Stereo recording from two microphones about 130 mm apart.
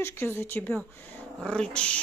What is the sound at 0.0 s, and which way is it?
Speech, 20° left (ahead or behind).